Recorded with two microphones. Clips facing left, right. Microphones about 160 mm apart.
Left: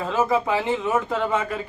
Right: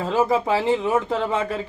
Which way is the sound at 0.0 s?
30° right (ahead or behind).